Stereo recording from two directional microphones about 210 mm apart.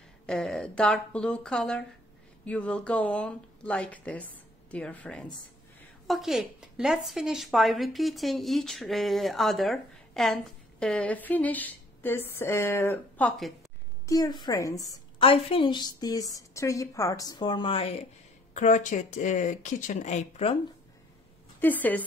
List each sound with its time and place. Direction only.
0.3 s a woman's voice: centre (ahead or behind); by 20.5 s 30° left (ahead or behind)
21.5 s a woman's voice: 10° left (ahead or behind)